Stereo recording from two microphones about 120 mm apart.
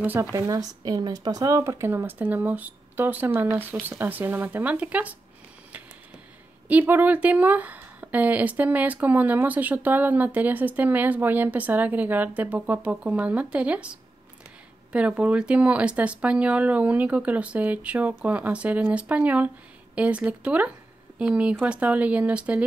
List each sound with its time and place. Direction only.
0.0 s a woman's voice: 15° right (ahead or behind)
0.4 s a woman's voice: 30° right (ahead or behind); by 5.1 s 10° right (ahead or behind)
6.7 s a woman's voice: 15° right (ahead or behind)